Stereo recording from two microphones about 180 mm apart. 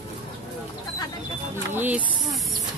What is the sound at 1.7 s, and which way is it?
Snake, 10° right (ahead or behind).